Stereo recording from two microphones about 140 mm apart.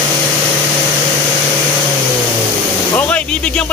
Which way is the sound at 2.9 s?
10° left (ahead or behind).